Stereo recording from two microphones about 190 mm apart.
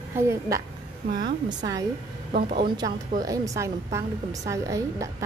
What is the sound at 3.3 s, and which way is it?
A woman's voice, 15° right (ahead or behind).